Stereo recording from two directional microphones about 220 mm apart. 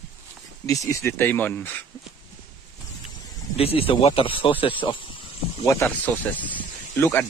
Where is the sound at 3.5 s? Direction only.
25° left (ahead or behind).